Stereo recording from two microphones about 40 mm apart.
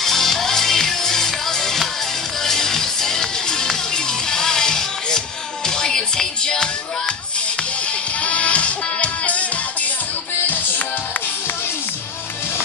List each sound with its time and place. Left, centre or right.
0.0 s music: centre
8.2 s music: left